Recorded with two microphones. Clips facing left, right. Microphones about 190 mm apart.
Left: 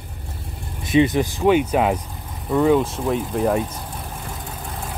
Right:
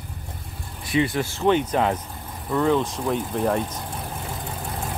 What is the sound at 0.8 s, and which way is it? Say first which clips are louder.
Speech: left 6 dB; 20° left (ahead or behind).